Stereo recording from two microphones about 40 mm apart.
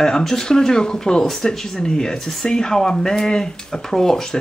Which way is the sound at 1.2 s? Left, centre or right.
Centre.